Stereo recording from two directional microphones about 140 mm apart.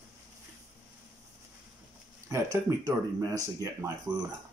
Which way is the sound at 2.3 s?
25° right (ahead or behind).